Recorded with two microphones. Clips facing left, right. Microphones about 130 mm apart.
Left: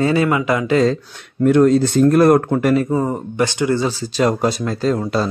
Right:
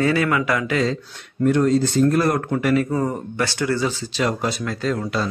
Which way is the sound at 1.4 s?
55° left (ahead or behind).